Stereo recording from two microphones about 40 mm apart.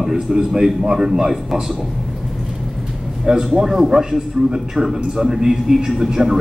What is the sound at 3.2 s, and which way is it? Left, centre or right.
A man's voice, centre.